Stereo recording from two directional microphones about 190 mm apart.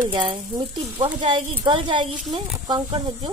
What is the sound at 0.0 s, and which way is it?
Speech, 25° right (ahead or behind).